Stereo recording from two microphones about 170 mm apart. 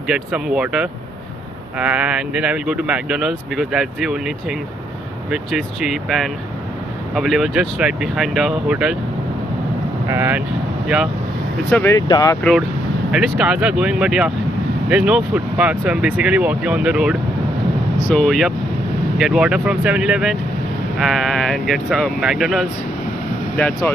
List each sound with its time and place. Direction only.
0.1 s speech: 5° right (ahead or behind)
10.0 s speech: 15° right (ahead or behind)
11.7 s speech: 15° left (ahead or behind)
13.1 s speech: 5° right (ahead or behind); by 23.9 s 10° left (ahead or behind)